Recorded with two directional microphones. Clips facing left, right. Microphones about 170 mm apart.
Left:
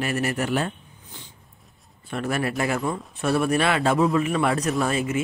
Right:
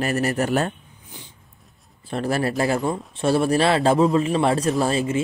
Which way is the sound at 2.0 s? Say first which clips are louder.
Right 3 dB; 35° right (ahead or behind).